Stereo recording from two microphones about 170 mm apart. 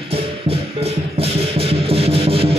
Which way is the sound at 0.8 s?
35° right (ahead or behind).